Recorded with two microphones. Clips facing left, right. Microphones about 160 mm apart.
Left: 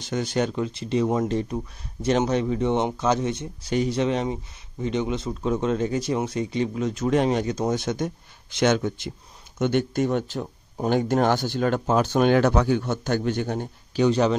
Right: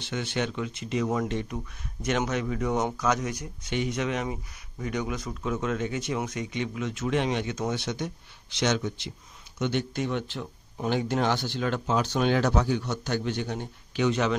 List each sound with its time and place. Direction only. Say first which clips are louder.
0.0 s speech: left 5 dB; 40° left (ahead or behind)